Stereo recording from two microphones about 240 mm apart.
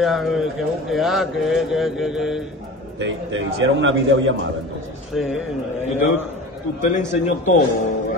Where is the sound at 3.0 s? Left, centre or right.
Right.